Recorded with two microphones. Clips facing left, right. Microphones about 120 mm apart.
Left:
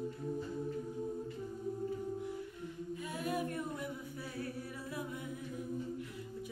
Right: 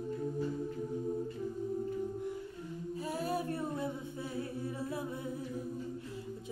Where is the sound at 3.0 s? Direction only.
35° right (ahead or behind).